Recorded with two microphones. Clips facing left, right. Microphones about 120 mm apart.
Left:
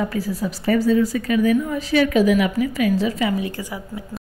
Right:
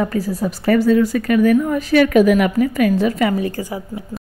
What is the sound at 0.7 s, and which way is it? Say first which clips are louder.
A woman's voice: right 3 dB; 70° right (ahead or behind).